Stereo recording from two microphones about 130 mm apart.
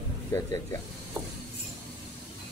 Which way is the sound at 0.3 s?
25° left (ahead or behind).